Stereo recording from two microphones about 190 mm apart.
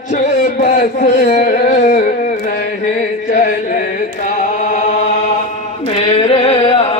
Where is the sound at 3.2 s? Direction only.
45° left (ahead or behind).